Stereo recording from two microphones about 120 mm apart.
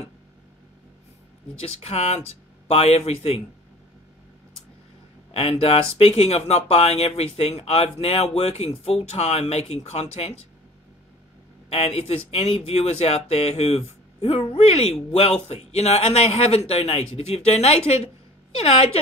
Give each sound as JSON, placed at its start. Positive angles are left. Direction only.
{"t": 1.6, "sound": "speech", "side_deg": 60}
{"t": 5.3, "sound": "speech", "side_deg": 55}
{"t": 11.7, "sound": "speech", "side_deg": 55}